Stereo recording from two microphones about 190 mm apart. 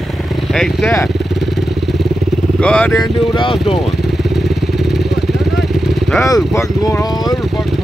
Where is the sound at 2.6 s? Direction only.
5° left (ahead or behind).